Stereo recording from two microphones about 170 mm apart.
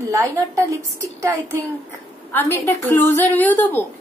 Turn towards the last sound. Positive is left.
turn(degrees=10)  # may be behind; listen again after turning